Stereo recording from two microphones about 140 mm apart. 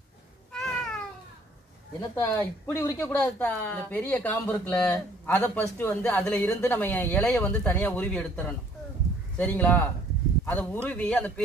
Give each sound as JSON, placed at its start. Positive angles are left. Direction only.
{"t": 0.5, "sound": "cat", "side_deg": 5}
{"t": 2.1, "sound": "speech", "side_deg": 20}